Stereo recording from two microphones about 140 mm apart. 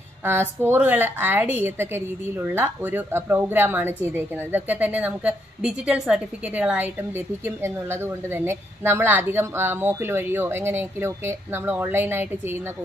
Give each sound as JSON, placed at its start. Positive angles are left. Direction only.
{"t": 0.2, "sound": "a woman's voice", "side_deg": -15}